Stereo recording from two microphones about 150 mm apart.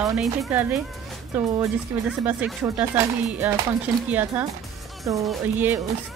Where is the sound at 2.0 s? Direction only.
5° right (ahead or behind).